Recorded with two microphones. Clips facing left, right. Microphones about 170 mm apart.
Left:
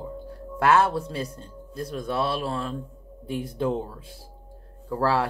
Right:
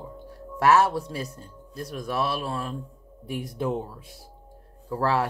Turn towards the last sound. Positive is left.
turn(degrees=30)  # may be behind; listen again after turning